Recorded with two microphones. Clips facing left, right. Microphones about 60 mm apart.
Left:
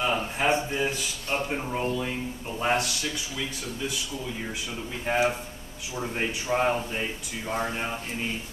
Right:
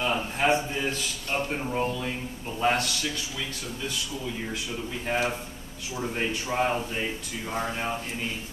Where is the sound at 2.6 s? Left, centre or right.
Centre.